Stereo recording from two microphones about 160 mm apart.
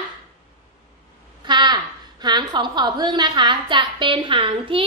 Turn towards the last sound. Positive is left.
turn(degrees=-30)  # may be behind; listen again after turning